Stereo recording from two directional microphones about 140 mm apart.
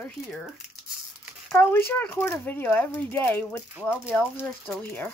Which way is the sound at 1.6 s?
15° left (ahead or behind).